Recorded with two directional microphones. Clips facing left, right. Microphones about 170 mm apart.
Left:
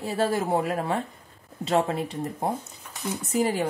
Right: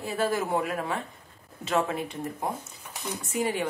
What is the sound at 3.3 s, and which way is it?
Speech, 35° left (ahead or behind).